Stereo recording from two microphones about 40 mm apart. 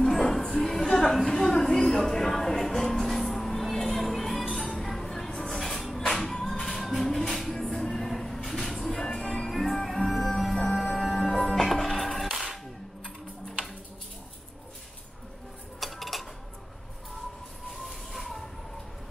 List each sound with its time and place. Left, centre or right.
0.0 s music: centre
0.8 s a sound: centre
5.8 s music: centre
6.6 s music: centre
9.5 s music: centre
12.3 s a sound: centre
15.8 s music: centre
17.8 s train: centre